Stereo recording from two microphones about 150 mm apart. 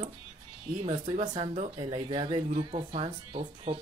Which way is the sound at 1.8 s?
35° right (ahead or behind).